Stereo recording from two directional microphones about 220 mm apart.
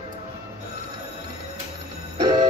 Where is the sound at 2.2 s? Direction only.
20° right (ahead or behind).